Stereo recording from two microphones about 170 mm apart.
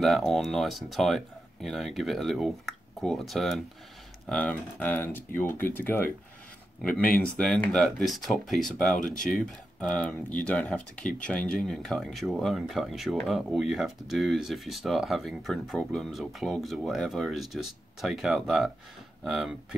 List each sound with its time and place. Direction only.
0.0 s speech: centre (ahead or behind)
8.9 s speech: 50° left (ahead or behind)
9.2 s speech: 5° left (ahead or behind)